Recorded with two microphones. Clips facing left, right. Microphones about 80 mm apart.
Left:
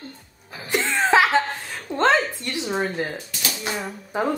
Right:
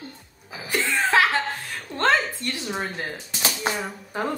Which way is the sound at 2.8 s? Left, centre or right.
Centre.